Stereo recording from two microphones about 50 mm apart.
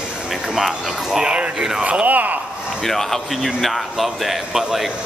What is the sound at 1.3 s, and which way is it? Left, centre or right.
Speech, right.